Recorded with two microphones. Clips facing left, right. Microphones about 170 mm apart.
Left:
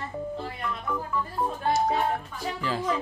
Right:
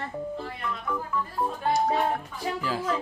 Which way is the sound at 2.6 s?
5° right (ahead or behind).